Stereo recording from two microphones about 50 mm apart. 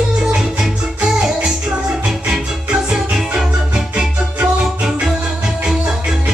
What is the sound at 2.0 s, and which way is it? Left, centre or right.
Music, centre.